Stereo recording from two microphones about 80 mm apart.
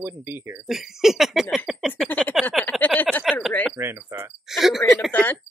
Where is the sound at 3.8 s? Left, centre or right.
Right.